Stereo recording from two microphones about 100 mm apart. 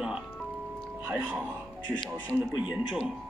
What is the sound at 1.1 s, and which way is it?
Speech, 20° right (ahead or behind).